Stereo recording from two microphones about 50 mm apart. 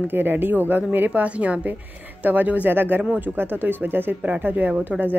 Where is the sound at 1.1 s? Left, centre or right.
Right.